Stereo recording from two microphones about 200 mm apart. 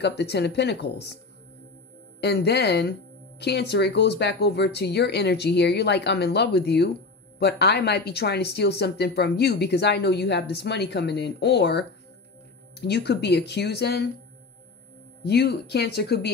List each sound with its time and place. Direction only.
0.0 s speech: 55° left (ahead or behind)
2.1 s speech: 55° left (ahead or behind)
15.2 s speech: 55° left (ahead or behind)